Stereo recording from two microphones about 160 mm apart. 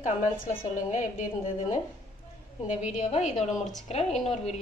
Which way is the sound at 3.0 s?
40° left (ahead or behind).